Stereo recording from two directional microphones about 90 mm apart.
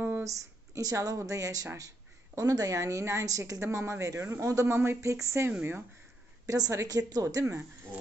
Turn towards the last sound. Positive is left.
turn(degrees=-35)  # may be behind; listen again after turning